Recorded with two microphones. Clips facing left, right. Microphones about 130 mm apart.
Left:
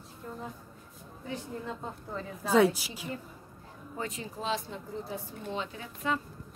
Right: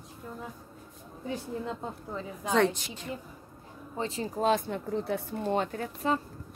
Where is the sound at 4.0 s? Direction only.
30° right (ahead or behind); by 5.9 s 50° right (ahead or behind).